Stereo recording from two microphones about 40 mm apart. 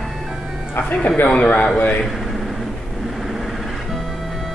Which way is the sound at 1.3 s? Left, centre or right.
Left.